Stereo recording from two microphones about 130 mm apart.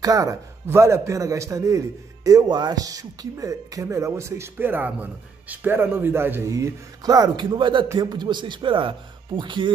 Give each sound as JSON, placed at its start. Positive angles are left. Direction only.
{"t": 0.0, "sound": "speech", "side_deg": -25}